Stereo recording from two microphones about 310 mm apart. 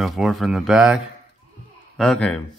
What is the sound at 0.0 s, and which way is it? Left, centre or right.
Speech, centre.